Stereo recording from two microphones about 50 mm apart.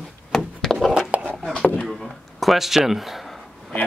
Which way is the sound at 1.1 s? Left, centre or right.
Right.